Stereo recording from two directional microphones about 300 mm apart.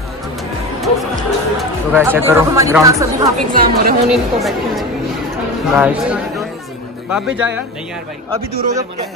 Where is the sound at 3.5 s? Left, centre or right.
Right.